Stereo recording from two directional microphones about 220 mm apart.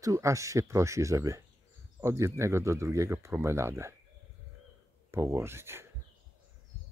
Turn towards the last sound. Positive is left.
turn(degrees=-10)  # may be behind; listen again after turning